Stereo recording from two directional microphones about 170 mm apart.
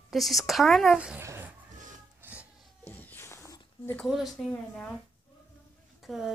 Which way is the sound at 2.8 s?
10° left (ahead or behind).